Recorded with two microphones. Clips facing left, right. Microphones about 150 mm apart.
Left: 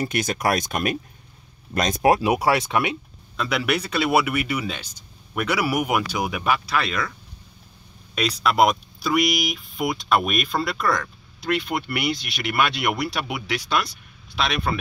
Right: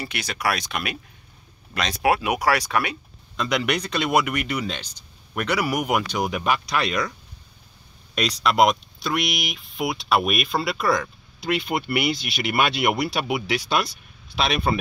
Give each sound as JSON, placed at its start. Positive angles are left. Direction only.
{"t": 0.0, "sound": "speech", "side_deg": 45}
{"t": 2.1, "sound": "speech", "side_deg": 30}
{"t": 3.3, "sound": "speech", "side_deg": 5}
{"t": 6.9, "sound": "speech", "side_deg": -15}
{"t": 8.1, "sound": "speech", "side_deg": 5}
{"t": 12.4, "sound": "speech", "side_deg": -25}